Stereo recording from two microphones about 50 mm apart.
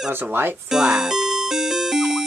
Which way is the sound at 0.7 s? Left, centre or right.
Centre.